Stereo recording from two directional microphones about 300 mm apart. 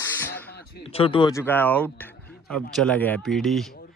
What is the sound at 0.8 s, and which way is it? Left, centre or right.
A man's voice, centre.